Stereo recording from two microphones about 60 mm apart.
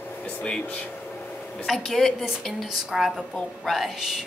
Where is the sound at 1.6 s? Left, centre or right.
Centre.